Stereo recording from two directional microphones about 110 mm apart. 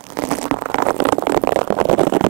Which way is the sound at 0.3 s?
15° right (ahead or behind).